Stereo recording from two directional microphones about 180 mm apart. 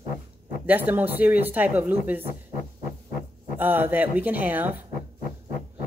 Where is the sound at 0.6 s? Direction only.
10° right (ahead or behind).